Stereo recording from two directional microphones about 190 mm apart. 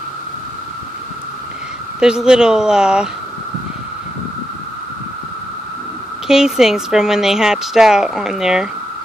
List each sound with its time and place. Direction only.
2.0 s a woman's voice: 5° right (ahead or behind)
6.2 s a woman's voice: 5° right (ahead or behind)